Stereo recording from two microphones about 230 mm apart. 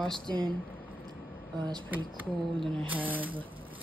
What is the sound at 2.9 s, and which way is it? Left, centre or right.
Speech, centre.